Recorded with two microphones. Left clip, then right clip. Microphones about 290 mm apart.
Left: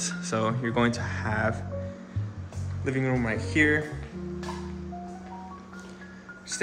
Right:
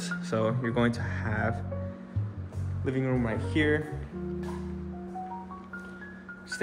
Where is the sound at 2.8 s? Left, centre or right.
Centre.